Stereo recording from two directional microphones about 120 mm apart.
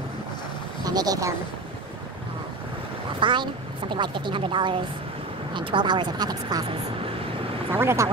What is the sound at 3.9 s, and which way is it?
Speech, 45° right (ahead or behind).